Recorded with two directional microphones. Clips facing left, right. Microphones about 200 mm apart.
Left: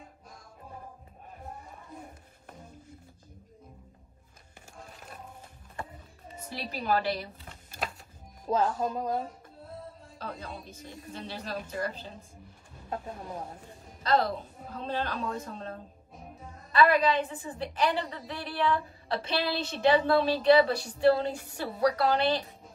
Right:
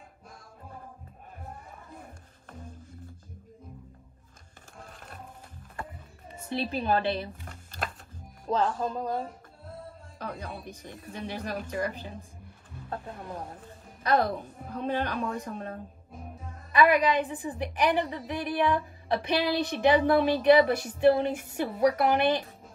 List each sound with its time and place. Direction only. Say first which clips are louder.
6.5 s speech: right 3 dB; 25° right (ahead or behind)
8.5 s speech: even; 5° left (ahead or behind)
10.1 s speech: right 2 dB; 15° right (ahead or behind)
10.8 s speech: even; 55° right (ahead or behind)
11.1 s a woman's voice: right 3 dB; 15° right (ahead or behind)
14.0 s a woman's voice: right 1 dB; 15° right (ahead or behind)
16.7 s a woman's voice: right 1 dB; 15° right (ahead or behind)